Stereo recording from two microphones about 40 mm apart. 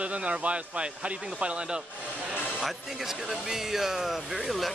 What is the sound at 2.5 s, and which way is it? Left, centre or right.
Speech, centre.